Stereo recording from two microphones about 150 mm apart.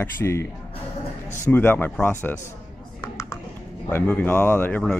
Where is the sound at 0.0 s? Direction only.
15° left (ahead or behind).